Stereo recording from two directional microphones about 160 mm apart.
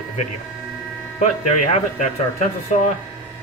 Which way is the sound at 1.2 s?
50° left (ahead or behind).